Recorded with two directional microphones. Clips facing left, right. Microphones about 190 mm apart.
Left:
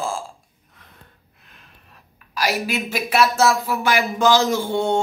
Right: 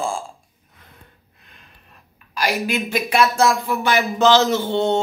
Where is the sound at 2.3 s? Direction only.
5° left (ahead or behind).